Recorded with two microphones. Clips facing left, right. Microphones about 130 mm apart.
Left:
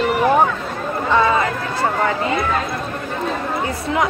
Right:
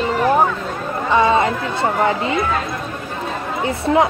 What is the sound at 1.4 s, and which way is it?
Speech, 25° right (ahead or behind).